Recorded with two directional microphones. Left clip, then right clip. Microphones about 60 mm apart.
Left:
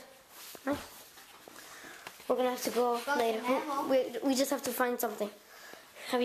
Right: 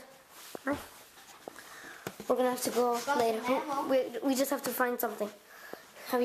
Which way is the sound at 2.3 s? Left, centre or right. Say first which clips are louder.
Right 1 dB; right.